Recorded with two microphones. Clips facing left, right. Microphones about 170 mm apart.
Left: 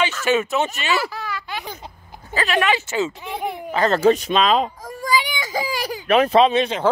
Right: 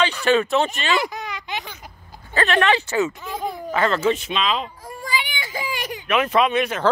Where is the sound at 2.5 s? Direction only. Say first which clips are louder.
Right 1 dB; 15° left (ahead or behind).